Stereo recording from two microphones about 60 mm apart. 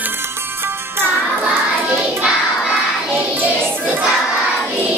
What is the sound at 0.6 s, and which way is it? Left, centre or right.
Music, right.